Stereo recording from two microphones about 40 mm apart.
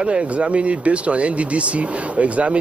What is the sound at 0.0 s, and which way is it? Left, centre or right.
Speech, right.